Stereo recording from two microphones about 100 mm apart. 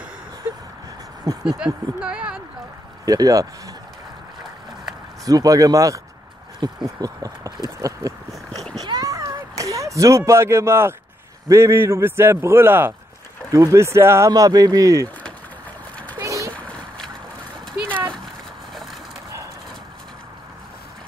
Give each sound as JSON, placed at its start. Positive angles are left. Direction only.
{"t": 1.2, "sound": "speech", "side_deg": -40}
{"t": 2.0, "sound": "a sound", "side_deg": -10}
{"t": 3.1, "sound": "speech", "side_deg": -35}
{"t": 5.2, "sound": "speech", "side_deg": -35}
{"t": 6.6, "sound": "a sound", "side_deg": -45}
{"t": 7.0, "sound": "speech", "side_deg": -40}
{"t": 8.7, "sound": "a sound", "side_deg": -40}
{"t": 11.4, "sound": "a man's voice", "side_deg": -30}
{"t": 14.3, "sound": "speech", "side_deg": -35}
{"t": 16.2, "sound": "splash", "side_deg": -30}
{"t": 16.5, "sound": "splash", "side_deg": 10}